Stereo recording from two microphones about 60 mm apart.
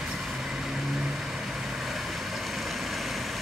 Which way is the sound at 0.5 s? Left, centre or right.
Centre.